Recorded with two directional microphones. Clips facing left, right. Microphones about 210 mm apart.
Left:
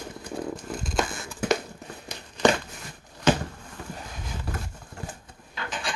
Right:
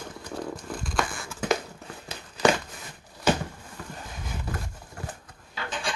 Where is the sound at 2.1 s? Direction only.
5° right (ahead or behind).